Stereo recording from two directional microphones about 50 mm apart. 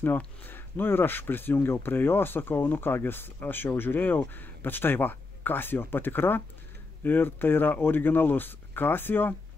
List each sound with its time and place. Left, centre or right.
0.0 s speech: left